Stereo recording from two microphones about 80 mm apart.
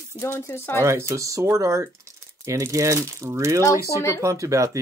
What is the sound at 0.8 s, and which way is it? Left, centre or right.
Speech, right.